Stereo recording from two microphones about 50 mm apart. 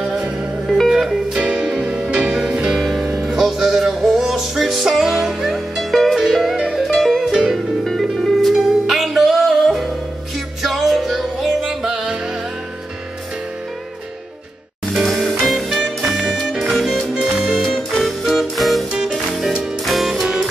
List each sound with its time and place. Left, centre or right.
0.0 s music: centre
0.8 s music: centre
1.4 s music: right
1.7 s music: centre
2.8 s music: centre
7.8 s music: centre
15.0 s music: centre
17.6 s music: centre
18.9 s music: centre
19.8 s music: centre